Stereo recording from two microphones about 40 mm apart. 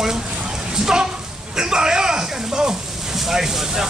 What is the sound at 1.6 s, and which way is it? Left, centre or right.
Speech, centre.